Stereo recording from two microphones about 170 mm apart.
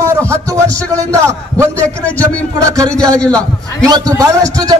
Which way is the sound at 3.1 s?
5° left (ahead or behind).